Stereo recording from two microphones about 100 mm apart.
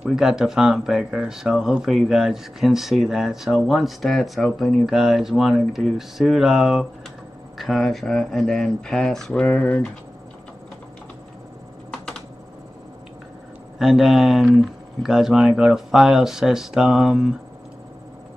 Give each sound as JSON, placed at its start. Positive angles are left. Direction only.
{"t": 0.0, "sound": "speech", "side_deg": -5}
{"t": 13.7, "sound": "speech", "side_deg": 0}